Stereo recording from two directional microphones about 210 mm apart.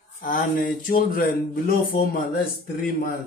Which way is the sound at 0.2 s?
40° left (ahead or behind).